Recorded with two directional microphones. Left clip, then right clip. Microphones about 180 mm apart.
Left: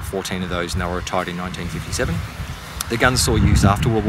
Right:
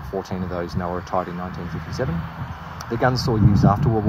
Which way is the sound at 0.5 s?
25° left (ahead or behind).